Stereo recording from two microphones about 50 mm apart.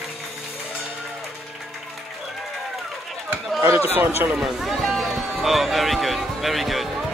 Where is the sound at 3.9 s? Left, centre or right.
Right.